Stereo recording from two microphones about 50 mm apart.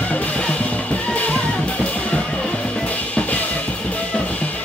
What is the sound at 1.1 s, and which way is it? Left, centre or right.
Music, left.